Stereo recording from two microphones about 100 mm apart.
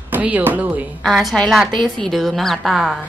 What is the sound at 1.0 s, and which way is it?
A woman's voice, centre (ahead or behind).